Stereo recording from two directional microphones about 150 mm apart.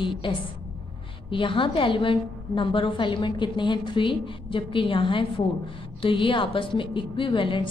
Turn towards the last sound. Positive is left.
turn(degrees=35)  # may be behind; listen again after turning